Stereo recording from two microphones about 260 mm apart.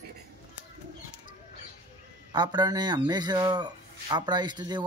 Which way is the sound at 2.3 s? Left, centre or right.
Centre.